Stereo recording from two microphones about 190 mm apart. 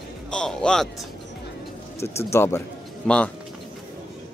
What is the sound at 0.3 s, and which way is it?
Speech, 5° left (ahead or behind).